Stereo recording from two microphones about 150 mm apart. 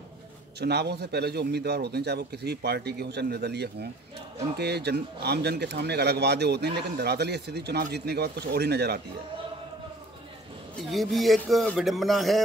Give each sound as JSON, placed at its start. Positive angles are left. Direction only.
{"t": 0.6, "sound": "speech", "side_deg": -90}
{"t": 10.8, "sound": "speech", "side_deg": 0}